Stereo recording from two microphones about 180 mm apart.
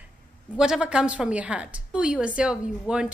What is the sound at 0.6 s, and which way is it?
A woman's voice, 5° right (ahead or behind).